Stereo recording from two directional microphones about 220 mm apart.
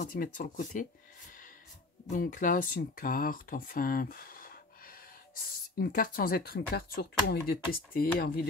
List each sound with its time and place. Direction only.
0.0 s speech: 40° left (ahead or behind)
2.0 s speech: 40° left (ahead or behind)